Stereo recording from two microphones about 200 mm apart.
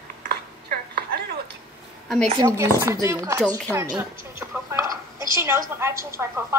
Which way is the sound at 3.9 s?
15° right (ahead or behind).